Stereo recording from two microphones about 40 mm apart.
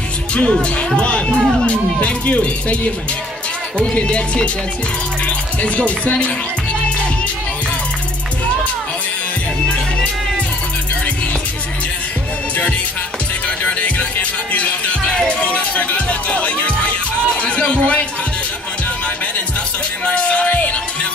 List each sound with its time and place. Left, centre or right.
0.3 s speech: left
3.9 s speech: left
5.6 s speech: left
13.7 s music: left
20.1 s music: left